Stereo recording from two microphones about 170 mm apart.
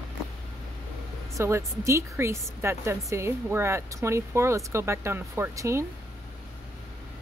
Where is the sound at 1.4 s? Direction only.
15° right (ahead or behind).